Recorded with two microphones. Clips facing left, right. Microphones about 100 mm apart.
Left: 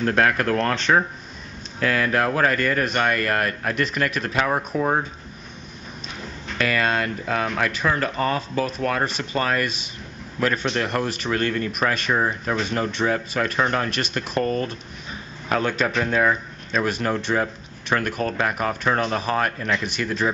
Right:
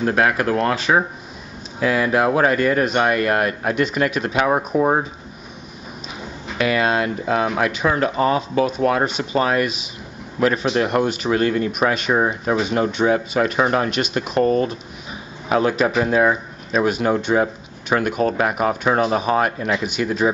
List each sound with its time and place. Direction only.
0.0 s speech: 10° right (ahead or behind)
4.5 s speech: 15° right (ahead or behind)
6.2 s a man's voice: 5° right (ahead or behind)